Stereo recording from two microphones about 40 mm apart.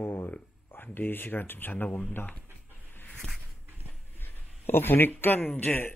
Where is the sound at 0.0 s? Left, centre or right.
Left.